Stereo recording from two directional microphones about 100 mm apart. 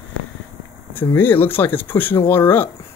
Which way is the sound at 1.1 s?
20° left (ahead or behind).